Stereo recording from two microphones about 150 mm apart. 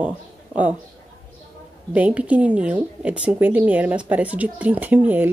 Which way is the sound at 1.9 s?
10° right (ahead or behind).